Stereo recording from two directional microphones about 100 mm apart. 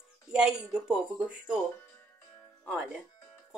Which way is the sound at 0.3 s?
5° right (ahead or behind).